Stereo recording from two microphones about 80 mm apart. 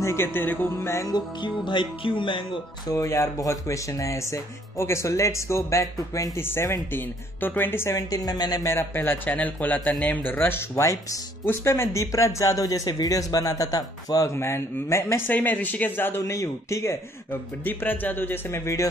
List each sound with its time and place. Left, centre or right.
0.0 s a man's voice: left
0.9 s speech: left
1.4 s music: left
2.9 s speech: left
6.4 s a man's voice: left
7.9 s a woman's voice: left
8.6 s a man's voice: left
10.8 s speech: left
14.3 s a man's voice: left
16.2 s speech: left